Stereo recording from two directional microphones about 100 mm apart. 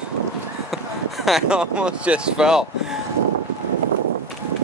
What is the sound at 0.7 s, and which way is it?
Speech, centre (ahead or behind).